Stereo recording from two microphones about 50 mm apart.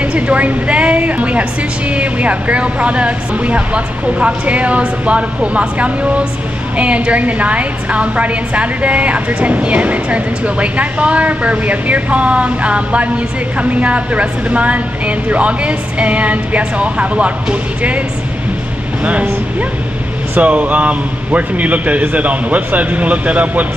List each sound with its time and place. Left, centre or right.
0.0 s a woman's voice: right
20.3 s a woman's voice: right